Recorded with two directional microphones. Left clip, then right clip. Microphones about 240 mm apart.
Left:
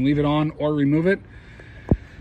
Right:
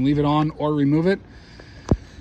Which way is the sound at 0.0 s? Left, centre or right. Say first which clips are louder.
Right 1 dB; centre.